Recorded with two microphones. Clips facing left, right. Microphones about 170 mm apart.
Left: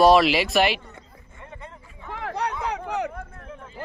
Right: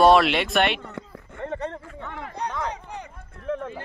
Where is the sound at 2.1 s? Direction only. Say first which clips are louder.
Left 3 dB; 85° left.